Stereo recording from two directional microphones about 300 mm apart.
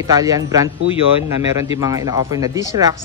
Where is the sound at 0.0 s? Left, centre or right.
Centre.